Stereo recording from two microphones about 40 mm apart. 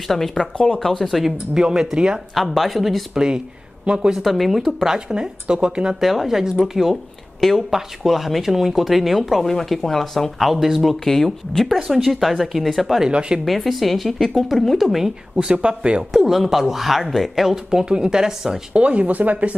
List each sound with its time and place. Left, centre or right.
0.1 s speech: centre
1.5 s speech: centre
2.3 s speech: centre
3.8 s speech: centre
4.2 s speech: centre
5.1 s speech: centre
5.9 s speech: centre
7.3 s a woman's voice: centre
7.7 s speech: centre
10.5 s speech: centre
15.3 s speech: right
16.1 s speech: centre
17.6 s speech: right
18.7 s speech: right